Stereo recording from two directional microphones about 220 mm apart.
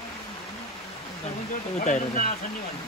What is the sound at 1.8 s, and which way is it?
Speech, 35° left (ahead or behind).